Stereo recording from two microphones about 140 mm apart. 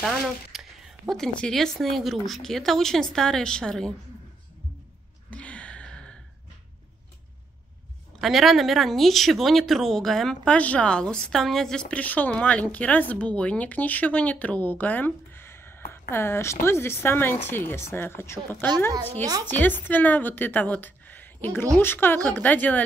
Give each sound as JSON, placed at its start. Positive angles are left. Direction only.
{"t": 0.0, "sound": "speech", "side_deg": 0}
{"t": 5.3, "sound": "gasp", "side_deg": 10}
{"t": 8.2, "sound": "speech", "side_deg": 0}